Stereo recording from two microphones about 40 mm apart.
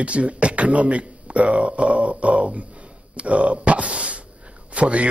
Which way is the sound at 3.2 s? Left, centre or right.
Right.